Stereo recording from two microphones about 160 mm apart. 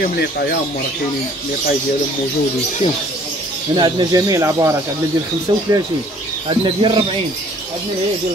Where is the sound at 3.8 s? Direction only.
30° right (ahead or behind).